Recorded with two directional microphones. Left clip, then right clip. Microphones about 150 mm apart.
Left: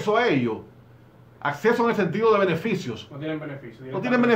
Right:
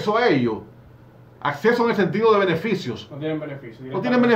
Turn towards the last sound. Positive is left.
turn(degrees=10)  # may be behind; listen again after turning